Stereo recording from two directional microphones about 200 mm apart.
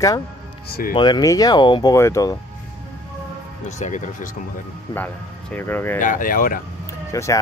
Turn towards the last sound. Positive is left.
turn(degrees=15)  # may be behind; listen again after turning